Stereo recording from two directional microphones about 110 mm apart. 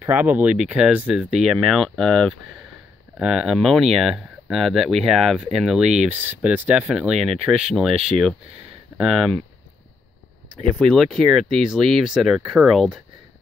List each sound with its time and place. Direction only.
0.0 s speech: 15° right (ahead or behind)
6.1 s speech: 20° right (ahead or behind)
7.0 s speech: 5° right (ahead or behind)
10.8 s speech: centre (ahead or behind)